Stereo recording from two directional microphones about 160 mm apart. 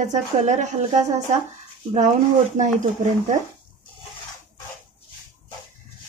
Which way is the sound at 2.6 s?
50° right (ahead or behind).